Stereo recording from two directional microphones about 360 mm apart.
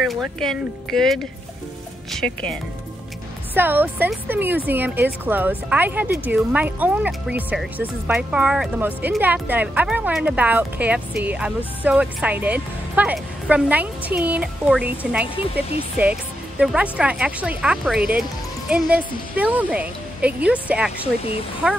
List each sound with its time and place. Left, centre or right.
0.0 s speech: centre